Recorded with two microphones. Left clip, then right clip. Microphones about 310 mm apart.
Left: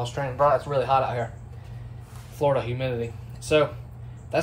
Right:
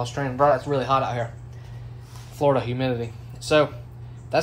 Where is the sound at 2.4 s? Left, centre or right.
Right.